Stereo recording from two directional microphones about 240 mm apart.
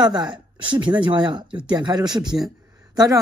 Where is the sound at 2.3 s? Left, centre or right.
Centre.